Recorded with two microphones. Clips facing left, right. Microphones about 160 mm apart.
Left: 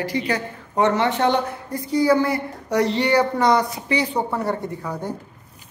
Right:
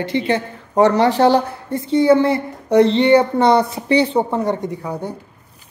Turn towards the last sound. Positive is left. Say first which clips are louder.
# right 3 dB
turn(degrees=-10)  # may be behind; listen again after turning